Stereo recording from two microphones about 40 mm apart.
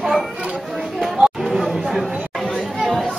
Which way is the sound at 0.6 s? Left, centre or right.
Centre.